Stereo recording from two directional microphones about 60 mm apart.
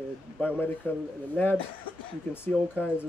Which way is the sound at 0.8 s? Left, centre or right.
Left.